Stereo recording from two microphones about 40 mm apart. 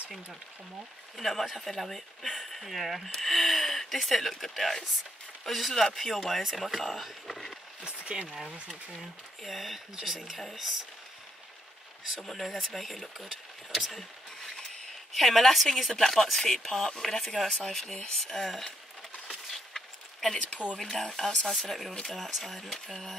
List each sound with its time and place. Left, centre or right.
1.1 s speech: centre
7.8 s speech: right
8.9 s speech: centre
12.2 s speech: centre
13.9 s a sound: centre
15.1 s speech: centre
19.5 s a sound: centre
20.6 s speech: right
20.9 s speech: centre
21.5 s speech: centre